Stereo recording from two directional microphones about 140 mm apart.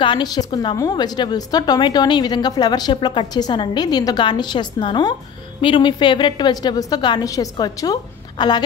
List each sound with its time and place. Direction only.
0.0 s a woman's voice: 30° left (ahead or behind)